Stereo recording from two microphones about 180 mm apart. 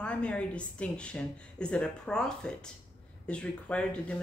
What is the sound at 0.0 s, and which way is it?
A woman's voice, 5° left (ahead or behind).